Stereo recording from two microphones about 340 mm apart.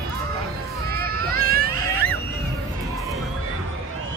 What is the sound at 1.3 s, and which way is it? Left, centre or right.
Baby cry, right.